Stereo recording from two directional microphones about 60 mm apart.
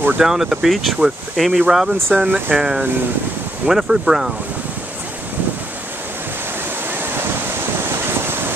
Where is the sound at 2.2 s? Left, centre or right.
Right.